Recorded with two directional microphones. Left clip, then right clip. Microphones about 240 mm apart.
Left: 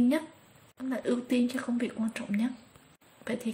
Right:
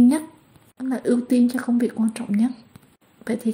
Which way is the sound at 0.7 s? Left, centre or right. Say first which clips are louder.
Right 8 dB; centre.